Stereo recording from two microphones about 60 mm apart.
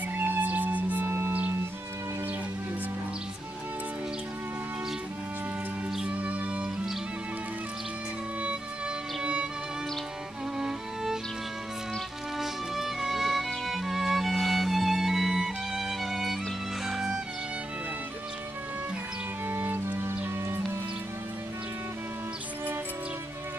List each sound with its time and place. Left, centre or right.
0.1 s music: right
6.0 s music: right
9.2 s music: centre
12.4 s music: centre
19.4 s music: right